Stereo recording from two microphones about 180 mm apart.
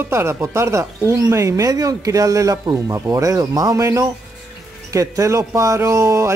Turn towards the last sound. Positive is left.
turn(degrees=-15)  # may be behind; listen again after turning